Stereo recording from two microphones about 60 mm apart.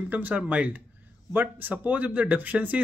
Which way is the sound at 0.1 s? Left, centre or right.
Right.